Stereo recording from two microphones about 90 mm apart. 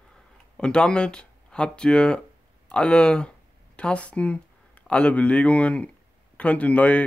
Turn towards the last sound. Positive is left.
turn(degrees=15)  # may be behind; listen again after turning